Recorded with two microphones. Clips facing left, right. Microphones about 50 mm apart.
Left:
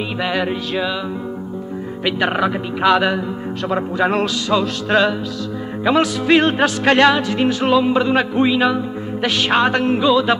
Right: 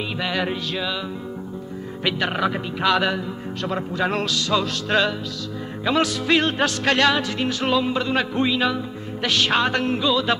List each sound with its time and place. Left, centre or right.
0.2 s music: centre
2.0 s music: centre